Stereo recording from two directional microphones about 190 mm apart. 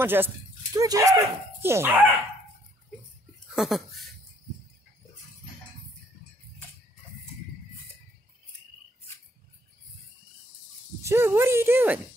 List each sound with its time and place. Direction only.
0.0 s speech: 10° right (ahead or behind)
3.5 s speech: centre (ahead or behind)
11.0 s speech: 15° right (ahead or behind)